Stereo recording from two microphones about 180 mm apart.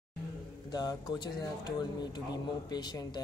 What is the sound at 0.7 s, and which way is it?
Speech, 25° left (ahead or behind).